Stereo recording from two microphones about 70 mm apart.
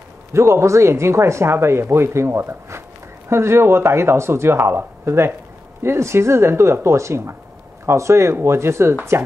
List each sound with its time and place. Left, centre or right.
0.3 s speech: right